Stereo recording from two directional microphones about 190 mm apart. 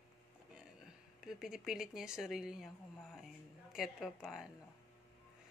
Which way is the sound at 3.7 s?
Centre (ahead or behind).